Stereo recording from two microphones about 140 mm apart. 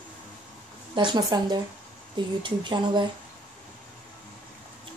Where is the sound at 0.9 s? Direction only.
30° right (ahead or behind).